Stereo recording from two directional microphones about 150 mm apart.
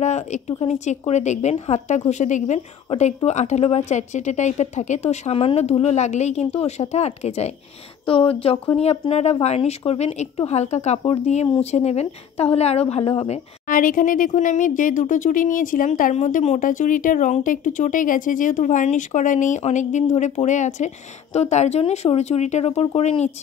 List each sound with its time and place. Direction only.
0.0 s a woman's voice: 50° left (ahead or behind)
13.7 s speech: 65° left (ahead or behind); by 23.1 s 45° left (ahead or behind)